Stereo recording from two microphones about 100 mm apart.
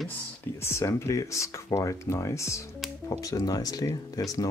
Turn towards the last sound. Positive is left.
turn(degrees=35)  # may be behind; listen again after turning